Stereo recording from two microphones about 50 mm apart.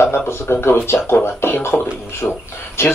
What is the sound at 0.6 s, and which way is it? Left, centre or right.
Speech, left.